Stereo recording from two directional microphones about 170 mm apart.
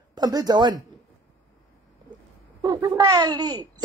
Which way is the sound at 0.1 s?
25° right (ahead or behind).